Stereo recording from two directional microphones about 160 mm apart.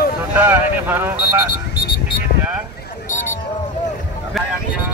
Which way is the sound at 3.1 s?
55° left (ahead or behind).